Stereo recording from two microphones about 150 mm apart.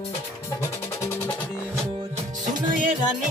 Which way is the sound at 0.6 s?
15° left (ahead or behind).